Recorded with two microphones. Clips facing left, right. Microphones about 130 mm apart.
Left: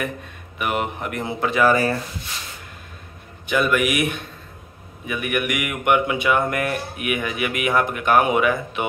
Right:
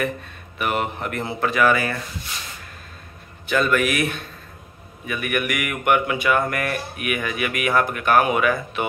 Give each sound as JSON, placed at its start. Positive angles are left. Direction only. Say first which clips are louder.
{"t": 0.6, "sound": "speech", "louder": "even", "side_deg": 15}
{"t": 3.4, "sound": "speech", "louder": "even", "side_deg": 15}